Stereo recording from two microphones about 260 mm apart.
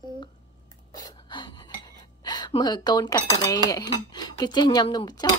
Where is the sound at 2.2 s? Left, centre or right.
Centre.